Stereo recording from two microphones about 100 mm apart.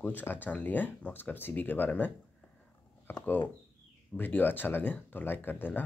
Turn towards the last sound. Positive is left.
turn(degrees=20)  # may be behind; listen again after turning